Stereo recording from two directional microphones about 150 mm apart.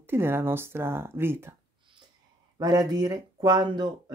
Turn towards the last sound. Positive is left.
turn(degrees=-30)  # may be behind; listen again after turning